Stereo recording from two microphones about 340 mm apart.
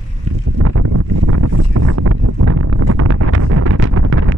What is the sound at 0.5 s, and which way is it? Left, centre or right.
Boat, right.